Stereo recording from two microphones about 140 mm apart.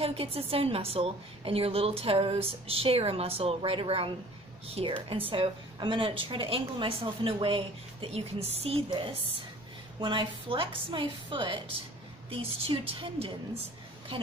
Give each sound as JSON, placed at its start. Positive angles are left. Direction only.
{"t": 0.0, "sound": "a woman's voice", "side_deg": -45}